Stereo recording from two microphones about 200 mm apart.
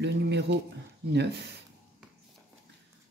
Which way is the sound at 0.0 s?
60° right (ahead or behind).